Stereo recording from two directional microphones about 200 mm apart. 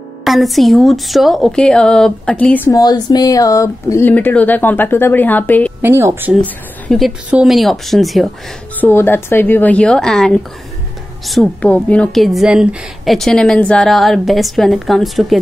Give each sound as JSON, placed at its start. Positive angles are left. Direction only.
{"t": 0.2, "sound": "a woman's voice", "side_deg": 0}
{"t": 5.8, "sound": "speech", "side_deg": -10}
{"t": 6.4, "sound": "a woman's voice", "side_deg": 0}
{"t": 8.8, "sound": "a woman's voice", "side_deg": 10}